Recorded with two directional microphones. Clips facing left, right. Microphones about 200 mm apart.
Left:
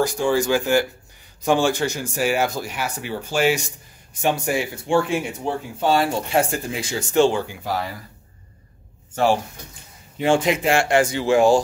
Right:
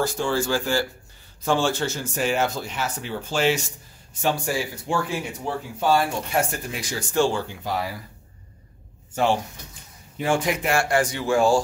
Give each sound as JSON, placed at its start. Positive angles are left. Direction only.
{"t": 0.0, "sound": "speech", "side_deg": 15}
{"t": 10.2, "sound": "speech", "side_deg": 25}